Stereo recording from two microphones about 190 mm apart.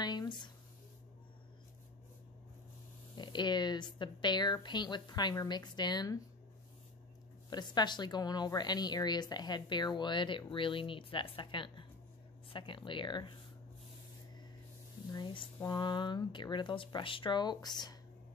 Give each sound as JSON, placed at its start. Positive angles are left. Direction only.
{"t": 0.0, "sound": "a sound", "side_deg": 20}
{"t": 3.2, "sound": "a woman's voice", "side_deg": 25}
{"t": 7.4, "sound": "a woman's voice", "side_deg": 20}
{"t": 15.1, "sound": "a woman's voice", "side_deg": 25}